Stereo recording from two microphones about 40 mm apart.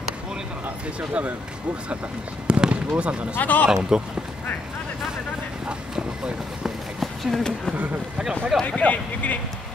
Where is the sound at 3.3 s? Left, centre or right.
Left.